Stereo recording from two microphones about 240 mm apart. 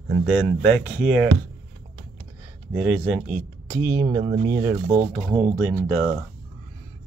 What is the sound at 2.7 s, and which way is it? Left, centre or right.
Speech, centre.